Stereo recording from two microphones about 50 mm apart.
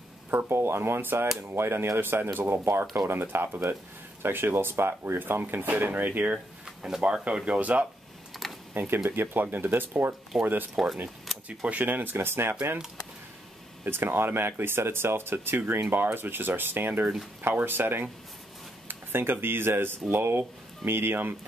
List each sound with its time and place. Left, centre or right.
0.5 s speech: right
5.4 s speech: right
6.6 s a sound: centre
7.1 s speech: right
8.3 s computer keyboard: centre
8.7 s speech: right
10.3 s speech: centre
10.8 s speech: centre
11.4 s speech: right
13.8 s speech: right
18.9 s a sound: right
19.4 s speech: right